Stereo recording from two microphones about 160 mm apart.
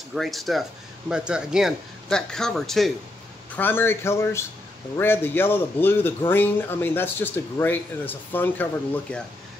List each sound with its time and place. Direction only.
0.1 s speech: centre (ahead or behind)
3.5 s a man's voice: 15° left (ahead or behind)